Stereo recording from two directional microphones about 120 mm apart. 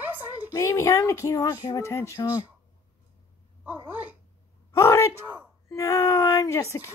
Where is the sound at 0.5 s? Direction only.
25° left (ahead or behind).